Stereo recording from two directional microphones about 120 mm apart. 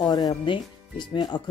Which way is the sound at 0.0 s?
35° left (ahead or behind).